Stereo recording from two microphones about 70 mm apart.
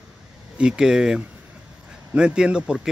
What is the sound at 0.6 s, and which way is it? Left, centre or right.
Speech, centre.